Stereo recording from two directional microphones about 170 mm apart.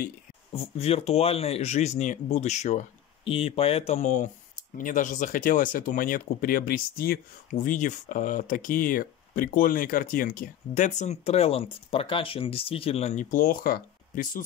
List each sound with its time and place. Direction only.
0.7 s speech: 35° left (ahead or behind); by 14.4 s 60° left (ahead or behind)